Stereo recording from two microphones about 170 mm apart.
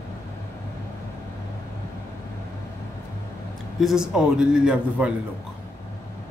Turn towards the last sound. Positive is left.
turn(degrees=-5)  # may be behind; listen again after turning